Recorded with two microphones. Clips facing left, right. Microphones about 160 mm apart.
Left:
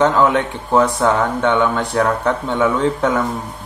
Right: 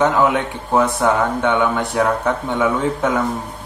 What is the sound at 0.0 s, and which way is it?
Speech, 15° right (ahead or behind).